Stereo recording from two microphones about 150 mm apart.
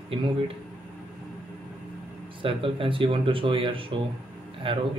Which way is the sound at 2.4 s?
35° right (ahead or behind).